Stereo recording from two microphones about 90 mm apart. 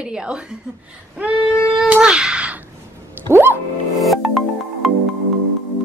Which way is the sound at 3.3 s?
25° right (ahead or behind).